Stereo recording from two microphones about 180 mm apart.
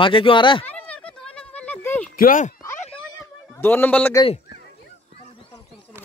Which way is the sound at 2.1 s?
50° left (ahead or behind).